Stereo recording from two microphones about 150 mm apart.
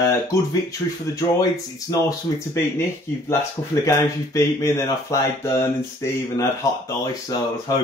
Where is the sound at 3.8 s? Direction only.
20° left (ahead or behind).